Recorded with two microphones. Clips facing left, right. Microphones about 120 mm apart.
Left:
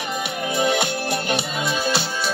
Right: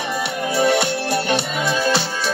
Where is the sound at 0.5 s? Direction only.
35° right (ahead or behind).